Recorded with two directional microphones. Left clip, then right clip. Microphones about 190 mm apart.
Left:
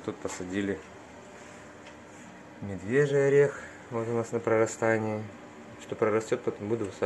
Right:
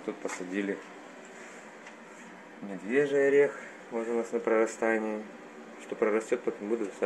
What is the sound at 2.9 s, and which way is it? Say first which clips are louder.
Speech: left 1 dB; 5° left (ahead or behind).